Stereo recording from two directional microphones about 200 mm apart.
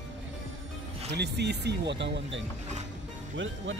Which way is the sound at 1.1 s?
55° right (ahead or behind).